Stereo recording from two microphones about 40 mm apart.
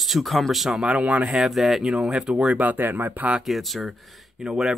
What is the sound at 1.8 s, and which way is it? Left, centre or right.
Speech, right.